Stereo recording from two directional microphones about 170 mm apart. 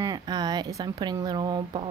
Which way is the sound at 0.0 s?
25° right (ahead or behind).